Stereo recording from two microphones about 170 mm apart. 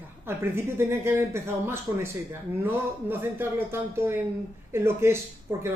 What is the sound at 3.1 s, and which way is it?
Speech, 15° right (ahead or behind).